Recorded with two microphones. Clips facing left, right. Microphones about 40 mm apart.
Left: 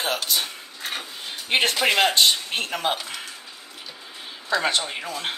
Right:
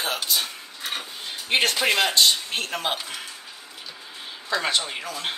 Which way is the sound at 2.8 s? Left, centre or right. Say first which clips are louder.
Left 2 dB; centre.